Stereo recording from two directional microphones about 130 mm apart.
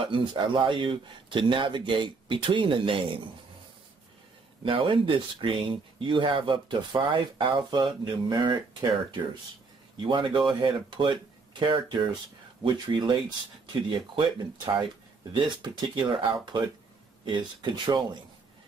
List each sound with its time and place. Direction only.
0.0 s speech: 40° right (ahead or behind)
4.6 s speech: 40° right (ahead or behind)
9.9 s speech: 40° right (ahead or behind)